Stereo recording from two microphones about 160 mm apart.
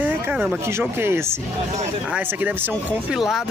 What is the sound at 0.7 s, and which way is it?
Speech, 15° right (ahead or behind).